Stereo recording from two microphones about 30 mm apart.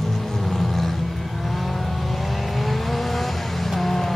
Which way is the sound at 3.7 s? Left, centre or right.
Centre.